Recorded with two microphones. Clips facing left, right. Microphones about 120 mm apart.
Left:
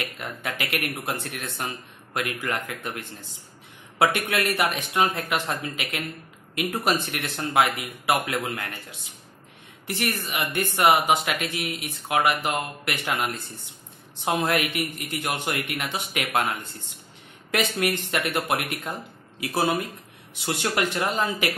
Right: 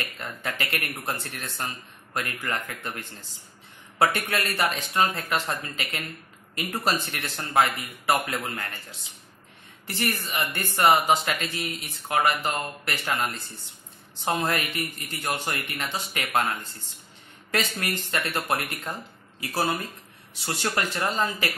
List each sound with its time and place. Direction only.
0.2 s speech: 10° left (ahead or behind)
9.8 s speech: 15° left (ahead or behind)
17.5 s speech: 15° left (ahead or behind)